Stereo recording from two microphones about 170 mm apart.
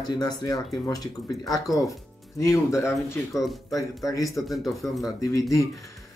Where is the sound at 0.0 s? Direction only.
25° left (ahead or behind).